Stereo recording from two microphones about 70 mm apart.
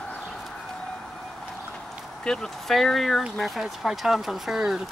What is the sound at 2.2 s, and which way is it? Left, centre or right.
Speech, centre.